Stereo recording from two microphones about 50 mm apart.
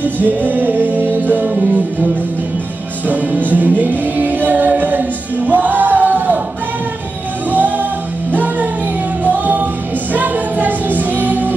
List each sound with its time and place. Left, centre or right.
0.0 s music: right
3.1 s music: right
7.5 s music: right